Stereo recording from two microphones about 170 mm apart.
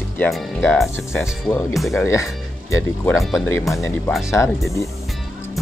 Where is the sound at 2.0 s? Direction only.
15° left (ahead or behind).